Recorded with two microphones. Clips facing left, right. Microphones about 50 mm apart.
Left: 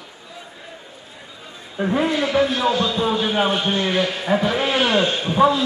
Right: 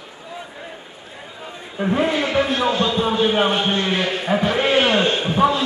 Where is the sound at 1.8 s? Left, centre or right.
Centre.